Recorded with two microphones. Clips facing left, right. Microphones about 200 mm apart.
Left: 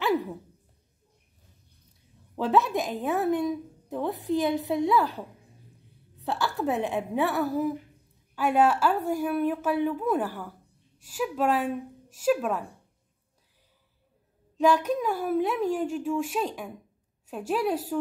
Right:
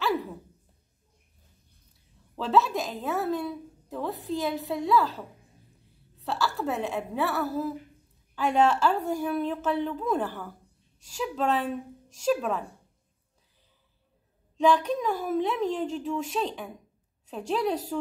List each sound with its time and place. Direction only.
2.3 s a woman's voice: 15° left (ahead or behind)
14.6 s a woman's voice: 5° left (ahead or behind)